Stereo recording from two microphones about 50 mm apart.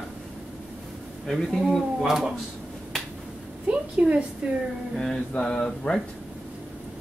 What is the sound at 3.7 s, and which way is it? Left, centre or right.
Speech, right.